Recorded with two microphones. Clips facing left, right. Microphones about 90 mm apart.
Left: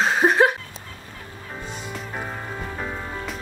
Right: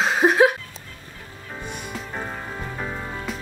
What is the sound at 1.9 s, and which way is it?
Music, centre (ahead or behind).